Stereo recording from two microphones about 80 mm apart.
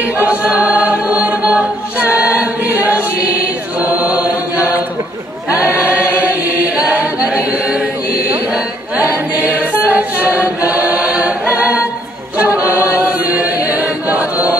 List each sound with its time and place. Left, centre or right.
0.2 s choir: centre
2.0 s chant: centre
5.6 s choir: centre
7.2 s chant: centre
9.9 s choir: centre